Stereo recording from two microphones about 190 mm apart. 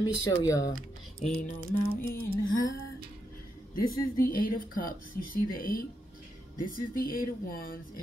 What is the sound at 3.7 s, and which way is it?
Speech, 50° left (ahead or behind).